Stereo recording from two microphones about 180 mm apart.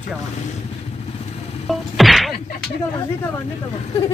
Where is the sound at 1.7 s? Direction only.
Centre (ahead or behind).